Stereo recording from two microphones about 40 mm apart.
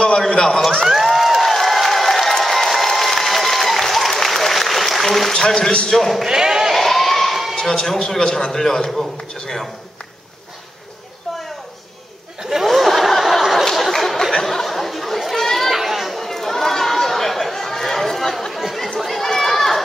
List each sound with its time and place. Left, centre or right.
0.0 s a man's voice: centre
0.8 s a sound: centre
5.3 s a man's voice: centre
6.2 s bleat: centre
6.7 s a sound: centre
7.5 s a man's voice: centre
12.4 s snicker: centre
13.7 s a sound: centre
14.4 s chatter: centre
15.7 s chatter: centre
18.5 s chatter: centre
18.9 s run: centre